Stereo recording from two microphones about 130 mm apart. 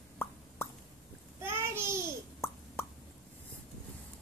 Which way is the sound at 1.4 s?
20° right (ahead or behind).